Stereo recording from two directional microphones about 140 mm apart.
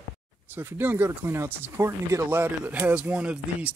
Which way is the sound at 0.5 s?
15° right (ahead or behind).